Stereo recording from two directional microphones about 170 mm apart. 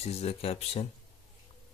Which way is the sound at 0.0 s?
35° left (ahead or behind).